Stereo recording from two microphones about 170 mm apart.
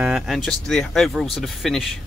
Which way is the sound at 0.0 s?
Centre (ahead or behind).